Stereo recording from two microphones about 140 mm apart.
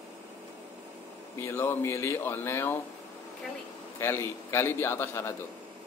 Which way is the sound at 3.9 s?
15° left (ahead or behind).